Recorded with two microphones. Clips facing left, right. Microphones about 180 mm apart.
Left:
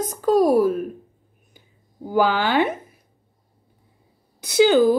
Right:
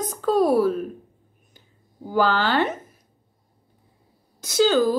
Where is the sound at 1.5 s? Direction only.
15° left (ahead or behind).